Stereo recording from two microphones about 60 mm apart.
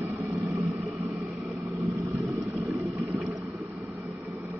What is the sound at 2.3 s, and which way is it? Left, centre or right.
Vehicle, centre.